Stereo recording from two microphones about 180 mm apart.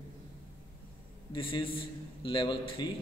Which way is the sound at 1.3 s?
30° left (ahead or behind).